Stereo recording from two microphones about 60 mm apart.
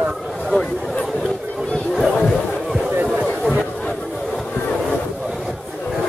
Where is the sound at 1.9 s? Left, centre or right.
Centre.